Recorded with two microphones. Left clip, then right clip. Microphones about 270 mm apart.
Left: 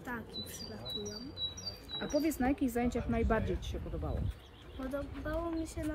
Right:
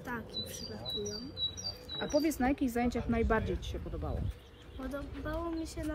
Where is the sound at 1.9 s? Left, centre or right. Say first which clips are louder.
Right 2 dB; centre.